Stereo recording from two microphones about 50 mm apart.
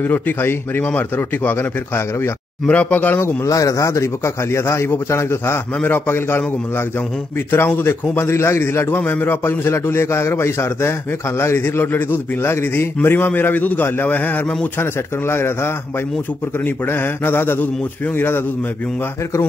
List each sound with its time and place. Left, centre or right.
0.0 s a man's voice: left
2.7 s speech: left
3.2 s a man's voice: left
5.9 s a man's voice: left
7.5 s a man's voice: left
8.9 s a man's voice: left
14.8 s a man's voice: left